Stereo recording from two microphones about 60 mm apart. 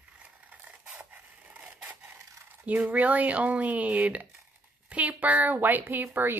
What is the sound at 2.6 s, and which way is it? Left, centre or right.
A woman's voice, right.